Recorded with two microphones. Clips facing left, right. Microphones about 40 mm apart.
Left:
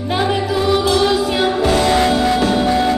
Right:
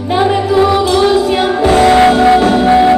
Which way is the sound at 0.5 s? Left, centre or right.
Right.